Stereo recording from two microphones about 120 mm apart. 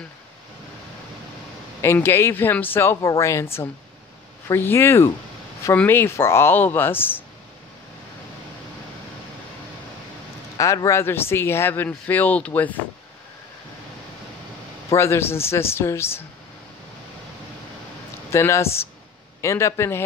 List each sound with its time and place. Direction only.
1.8 s speech: 20° left (ahead or behind)
4.5 s speech: 20° left (ahead or behind)
10.6 s speech: 25° left (ahead or behind)
14.9 s speech: 20° left (ahead or behind)
18.3 s speech: 25° left (ahead or behind)